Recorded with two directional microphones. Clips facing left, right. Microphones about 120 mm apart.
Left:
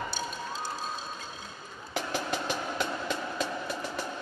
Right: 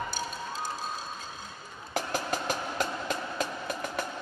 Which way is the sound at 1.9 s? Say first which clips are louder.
Right 1 dB; 40° right (ahead or behind).